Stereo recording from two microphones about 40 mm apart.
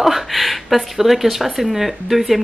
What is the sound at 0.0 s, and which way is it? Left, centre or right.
Speech, centre.